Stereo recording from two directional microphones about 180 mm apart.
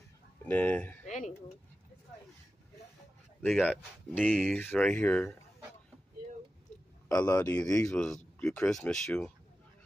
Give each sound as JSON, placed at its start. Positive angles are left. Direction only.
{"t": 0.5, "sound": "speech", "side_deg": 10}
{"t": 1.0, "sound": "a sound", "side_deg": 40}
{"t": 3.4, "sound": "speech", "side_deg": 5}
{"t": 7.1, "sound": "speech", "side_deg": 5}